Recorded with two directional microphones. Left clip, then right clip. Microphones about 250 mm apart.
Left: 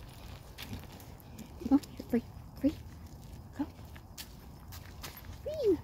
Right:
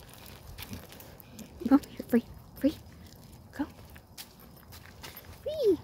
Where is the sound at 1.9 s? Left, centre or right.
Right.